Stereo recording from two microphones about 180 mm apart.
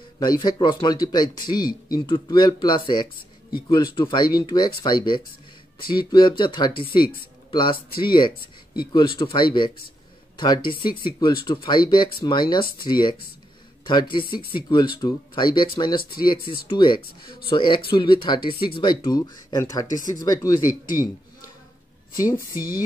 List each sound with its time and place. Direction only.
0.2 s speech: 25° left (ahead or behind)
8.9 s speech: 30° left (ahead or behind)
16.0 s speech: 55° left (ahead or behind)
16.6 s speech: 25° left (ahead or behind)
22.1 s speech: 20° left (ahead or behind)